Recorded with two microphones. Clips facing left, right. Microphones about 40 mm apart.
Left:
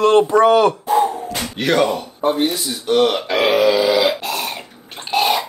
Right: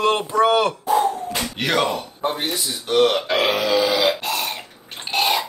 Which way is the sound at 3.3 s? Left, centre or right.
Centre.